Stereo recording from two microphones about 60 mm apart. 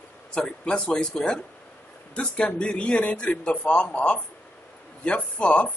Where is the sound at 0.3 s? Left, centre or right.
Centre.